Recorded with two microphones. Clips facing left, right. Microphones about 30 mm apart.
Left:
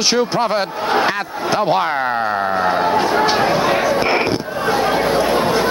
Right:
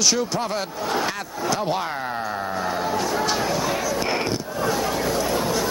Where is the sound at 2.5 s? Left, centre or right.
Left.